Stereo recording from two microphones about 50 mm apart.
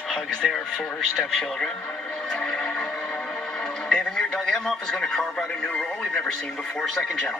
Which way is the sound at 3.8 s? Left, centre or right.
Centre.